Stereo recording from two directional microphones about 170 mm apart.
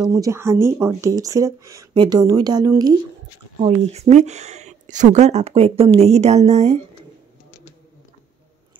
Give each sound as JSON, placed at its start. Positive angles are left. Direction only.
{"t": 0.0, "sound": "speech", "side_deg": -20}
{"t": 3.6, "sound": "speech", "side_deg": -40}